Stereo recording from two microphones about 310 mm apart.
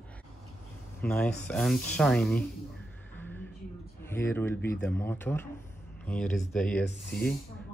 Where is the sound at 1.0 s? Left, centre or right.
Centre.